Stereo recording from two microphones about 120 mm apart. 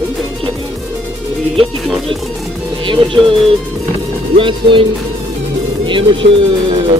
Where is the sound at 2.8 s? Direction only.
45° right (ahead or behind).